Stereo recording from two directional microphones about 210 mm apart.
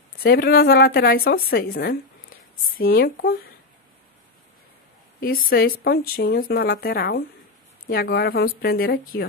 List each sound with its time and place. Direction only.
0.2 s speech: 45° left (ahead or behind)
5.2 s speech: 45° left (ahead or behind)